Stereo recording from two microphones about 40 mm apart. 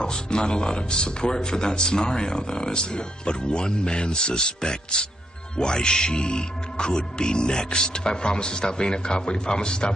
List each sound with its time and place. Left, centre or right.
0.0 s a man's voice: left